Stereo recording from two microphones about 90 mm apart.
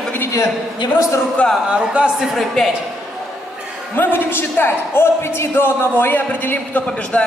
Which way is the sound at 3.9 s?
25° left (ahead or behind).